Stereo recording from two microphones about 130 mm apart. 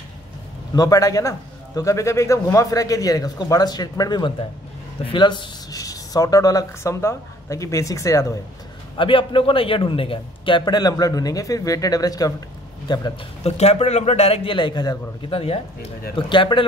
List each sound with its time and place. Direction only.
0.7 s a man's voice: 25° left (ahead or behind)
8.9 s a man's voice: 40° left (ahead or behind)
13.4 s a man's voice: 55° left (ahead or behind); by 15.3 s 35° left (ahead or behind)
15.3 s a man's voice: 50° left (ahead or behind)
16.2 s a man's voice: 40° left (ahead or behind)